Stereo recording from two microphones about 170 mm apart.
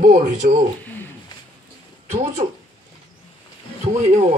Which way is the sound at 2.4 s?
45° right (ahead or behind).